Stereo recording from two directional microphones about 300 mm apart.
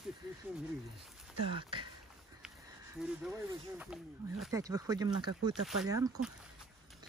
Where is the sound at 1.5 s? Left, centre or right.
Centre.